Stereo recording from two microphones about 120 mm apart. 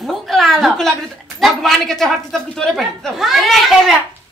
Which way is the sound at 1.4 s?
Centre (ahead or behind).